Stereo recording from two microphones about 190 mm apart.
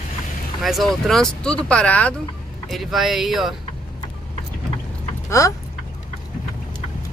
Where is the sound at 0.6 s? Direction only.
Centre (ahead or behind).